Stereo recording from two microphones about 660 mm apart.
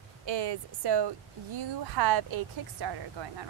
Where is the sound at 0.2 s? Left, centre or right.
Right.